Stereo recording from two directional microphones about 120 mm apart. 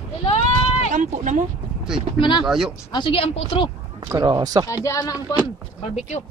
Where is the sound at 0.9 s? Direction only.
90° right.